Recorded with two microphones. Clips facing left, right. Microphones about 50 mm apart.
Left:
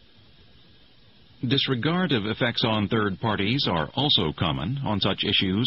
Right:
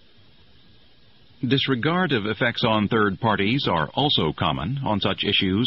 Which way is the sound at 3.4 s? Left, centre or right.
Centre.